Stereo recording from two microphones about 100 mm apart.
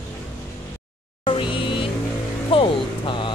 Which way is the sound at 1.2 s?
55° left (ahead or behind).